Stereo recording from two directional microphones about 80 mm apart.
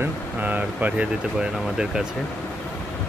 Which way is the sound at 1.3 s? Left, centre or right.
Centre.